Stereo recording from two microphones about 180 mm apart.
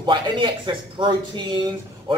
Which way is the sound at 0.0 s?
25° right (ahead or behind).